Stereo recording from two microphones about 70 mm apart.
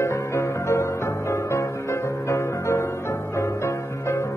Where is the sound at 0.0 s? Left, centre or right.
Left.